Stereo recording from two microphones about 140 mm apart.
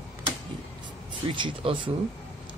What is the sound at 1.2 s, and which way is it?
Speech, 40° right (ahead or behind).